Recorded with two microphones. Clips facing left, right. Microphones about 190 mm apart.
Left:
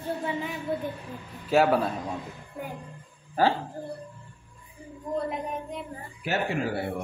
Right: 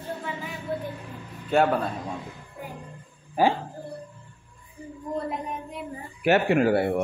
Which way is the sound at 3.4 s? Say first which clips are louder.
Right 2 dB; 15° right (ahead or behind).